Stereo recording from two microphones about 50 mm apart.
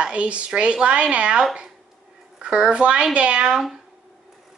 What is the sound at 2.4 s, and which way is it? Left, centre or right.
Speech, right.